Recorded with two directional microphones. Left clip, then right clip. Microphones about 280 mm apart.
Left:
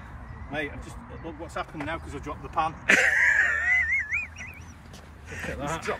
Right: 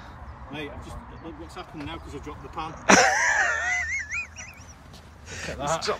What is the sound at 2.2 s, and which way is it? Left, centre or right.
Speech, centre.